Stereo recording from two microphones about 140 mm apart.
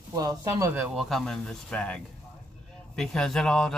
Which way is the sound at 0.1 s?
25° right (ahead or behind).